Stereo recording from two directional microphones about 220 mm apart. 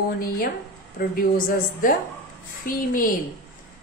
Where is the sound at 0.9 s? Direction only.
40° left (ahead or behind).